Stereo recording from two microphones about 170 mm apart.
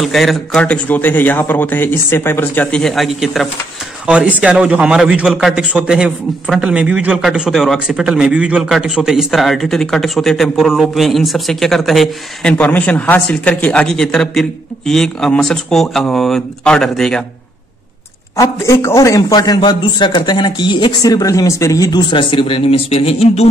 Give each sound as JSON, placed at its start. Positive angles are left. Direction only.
{"t": 0.0, "sound": "a man's voice", "side_deg": 0}
{"t": 18.3, "sound": "a man's voice", "side_deg": 20}